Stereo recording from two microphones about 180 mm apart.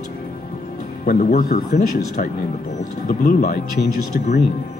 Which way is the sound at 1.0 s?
45° left (ahead or behind).